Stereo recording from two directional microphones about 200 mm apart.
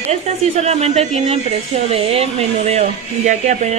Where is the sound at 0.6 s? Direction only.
35° right (ahead or behind).